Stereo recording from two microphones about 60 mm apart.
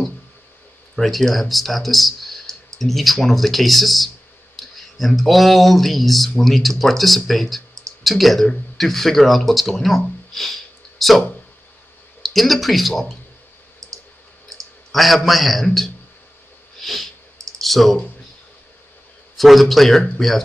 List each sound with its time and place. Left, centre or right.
0.9 s speech: centre
13.8 s clicking: right
14.9 s speech: centre
16.8 s sniff: centre
17.6 s clicking: centre
19.3 s speech: centre